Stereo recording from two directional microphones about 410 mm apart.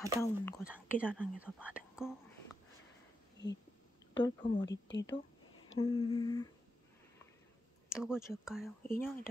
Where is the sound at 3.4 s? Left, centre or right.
Left.